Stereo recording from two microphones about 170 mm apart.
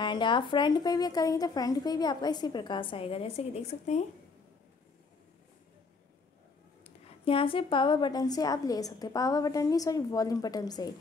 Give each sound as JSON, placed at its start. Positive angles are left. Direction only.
{"t": 0.0, "sound": "speech", "side_deg": 25}
{"t": 7.1, "sound": "speech", "side_deg": 30}